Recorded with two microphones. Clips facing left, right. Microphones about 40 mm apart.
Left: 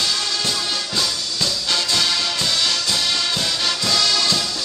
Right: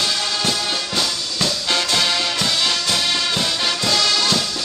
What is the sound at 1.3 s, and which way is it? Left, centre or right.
Music, right.